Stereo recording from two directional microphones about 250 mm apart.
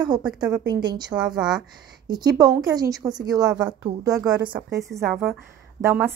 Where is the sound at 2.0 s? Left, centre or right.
Centre.